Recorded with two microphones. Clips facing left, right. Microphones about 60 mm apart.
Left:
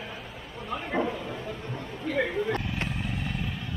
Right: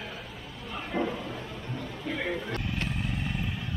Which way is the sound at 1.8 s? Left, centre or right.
Left.